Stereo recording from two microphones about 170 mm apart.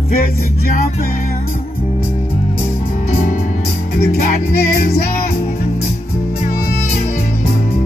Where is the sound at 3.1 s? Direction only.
55° left (ahead or behind).